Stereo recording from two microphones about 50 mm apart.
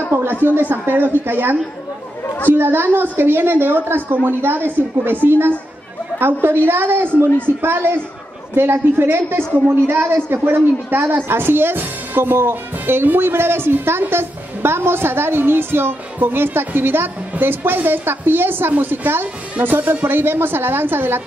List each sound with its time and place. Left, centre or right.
0.1 s speech: right